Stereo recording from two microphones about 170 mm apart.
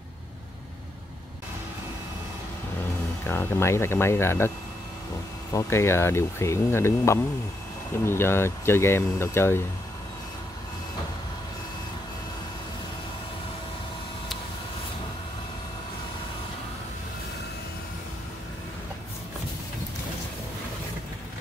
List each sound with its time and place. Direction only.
3.3 s speech: 15° left (ahead or behind)
5.5 s speech: 15° left (ahead or behind)